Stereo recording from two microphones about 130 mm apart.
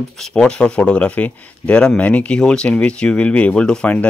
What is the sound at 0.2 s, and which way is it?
Speech, 5° left (ahead or behind).